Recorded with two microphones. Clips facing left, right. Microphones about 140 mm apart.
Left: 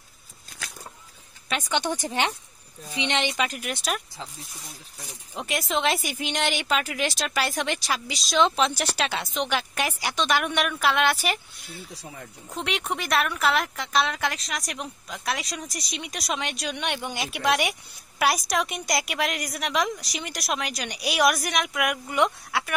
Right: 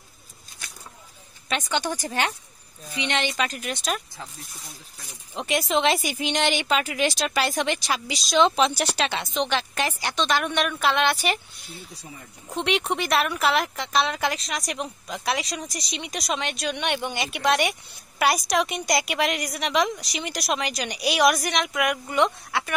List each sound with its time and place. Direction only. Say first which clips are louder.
1.7 s speech: left 2 dB; 20° left (ahead or behind)
5.3 s speech: right 4 dB; centre (ahead or behind)
12.4 s speech: right 5 dB; centre (ahead or behind)